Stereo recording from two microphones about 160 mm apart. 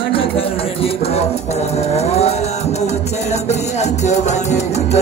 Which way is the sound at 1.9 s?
40° left (ahead or behind).